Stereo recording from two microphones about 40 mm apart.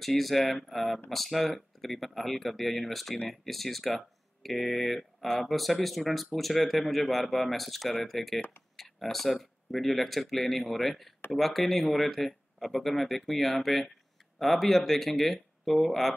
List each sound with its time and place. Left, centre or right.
0.0 s speech: centre